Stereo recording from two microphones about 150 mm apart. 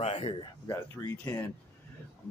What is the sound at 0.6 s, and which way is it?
Speech, 20° left (ahead or behind).